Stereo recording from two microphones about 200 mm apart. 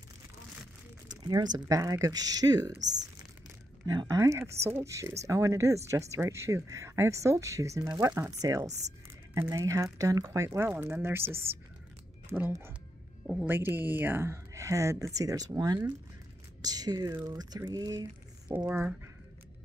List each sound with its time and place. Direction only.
1.3 s speech: 20° right (ahead or behind)
3.8 s speech: 20° right (ahead or behind)
8.6 s speech: 35° right (ahead or behind)
9.3 s speech: 15° right (ahead or behind)
16.6 s a sound: 20° right (ahead or behind)
18.7 s speech: 10° right (ahead or behind)